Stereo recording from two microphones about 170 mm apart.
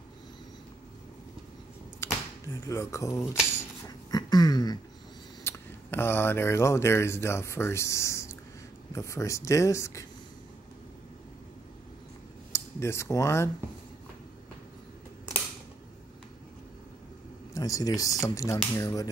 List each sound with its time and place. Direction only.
2.0 s a sound: 15° left (ahead or behind)
2.6 s speech: 20° left (ahead or behind)
4.1 s a sound: 25° left (ahead or behind)
5.4 s speech: 15° left (ahead or behind)
12.5 s speech: 15° left (ahead or behind)
17.6 s speech: 20° left (ahead or behind)